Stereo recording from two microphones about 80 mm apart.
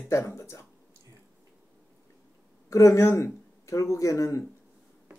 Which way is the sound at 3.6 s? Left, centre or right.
Left.